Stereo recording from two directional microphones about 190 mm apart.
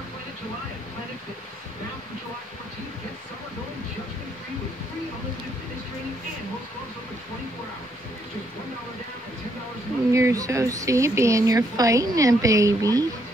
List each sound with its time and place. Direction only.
10.1 s speech: 15° right (ahead or behind)